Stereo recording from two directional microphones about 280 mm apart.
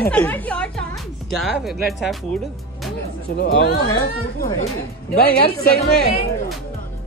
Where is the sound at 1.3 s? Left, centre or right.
Centre.